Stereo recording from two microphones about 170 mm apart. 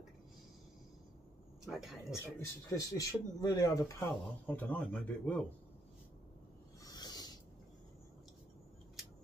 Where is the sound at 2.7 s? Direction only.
20° left (ahead or behind).